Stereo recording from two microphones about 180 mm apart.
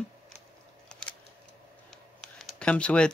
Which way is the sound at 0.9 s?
5° left (ahead or behind).